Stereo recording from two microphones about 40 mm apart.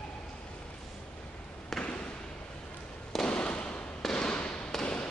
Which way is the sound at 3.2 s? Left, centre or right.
Left.